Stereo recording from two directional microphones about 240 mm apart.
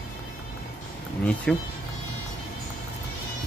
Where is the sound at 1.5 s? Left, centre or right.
Centre.